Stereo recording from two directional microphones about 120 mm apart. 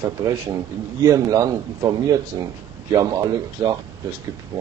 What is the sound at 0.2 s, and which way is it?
A man's voice, 30° right (ahead or behind).